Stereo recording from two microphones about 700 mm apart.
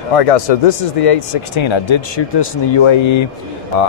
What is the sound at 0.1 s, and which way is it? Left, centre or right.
Speech, left.